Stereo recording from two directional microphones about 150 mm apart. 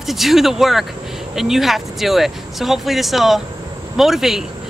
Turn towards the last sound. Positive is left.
turn(degrees=0)  # may be behind; listen again after turning